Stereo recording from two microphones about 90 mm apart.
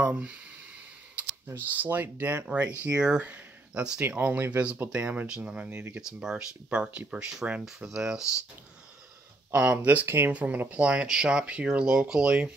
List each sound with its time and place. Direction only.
0.0 s speech: 15° right (ahead or behind)
1.8 s speech: 20° right (ahead or behind)
9.5 s speech: 20° right (ahead or behind)